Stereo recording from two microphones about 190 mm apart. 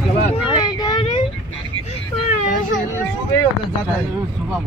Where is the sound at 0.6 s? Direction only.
20° left (ahead or behind).